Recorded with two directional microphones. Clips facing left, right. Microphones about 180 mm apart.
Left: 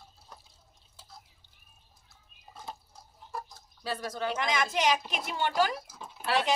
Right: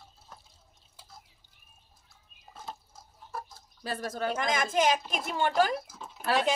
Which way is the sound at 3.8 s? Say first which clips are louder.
Right 1 dB; 50° right (ahead or behind).